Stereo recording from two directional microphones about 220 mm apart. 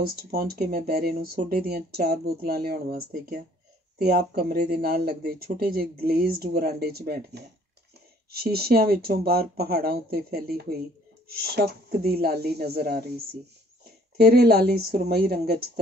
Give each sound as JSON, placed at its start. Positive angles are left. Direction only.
{"t": 0.3, "sound": "speech", "side_deg": -45}